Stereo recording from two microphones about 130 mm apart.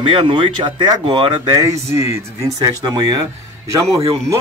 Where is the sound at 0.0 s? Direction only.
40° right (ahead or behind).